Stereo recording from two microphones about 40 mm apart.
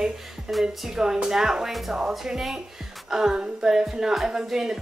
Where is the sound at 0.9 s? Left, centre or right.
Centre.